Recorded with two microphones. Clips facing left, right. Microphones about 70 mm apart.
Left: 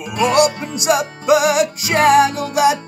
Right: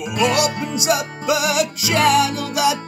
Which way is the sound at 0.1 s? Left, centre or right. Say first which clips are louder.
Left 4 dB; left.